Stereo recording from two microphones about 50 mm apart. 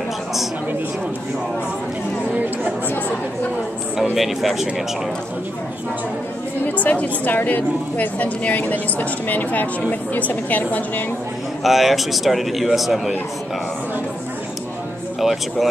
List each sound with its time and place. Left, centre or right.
3.9 s speech: centre
6.6 s a woman's voice: left
11.6 s a man's voice: centre
15.1 s a man's voice: centre